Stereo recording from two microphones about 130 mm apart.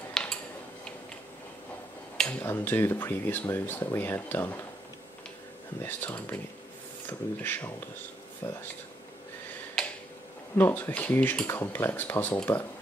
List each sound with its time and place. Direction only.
0.1 s a sound: 5° left (ahead or behind)
2.4 s speech: 15° left (ahead or behind)
5.8 s speech: 15° left (ahead or behind)
10.6 s speech: 15° left (ahead or behind)